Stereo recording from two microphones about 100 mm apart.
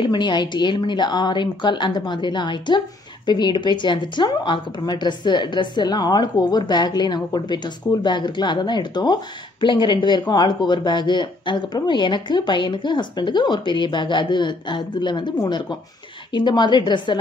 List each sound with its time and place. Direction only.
0.0 s speech: 45° left (ahead or behind)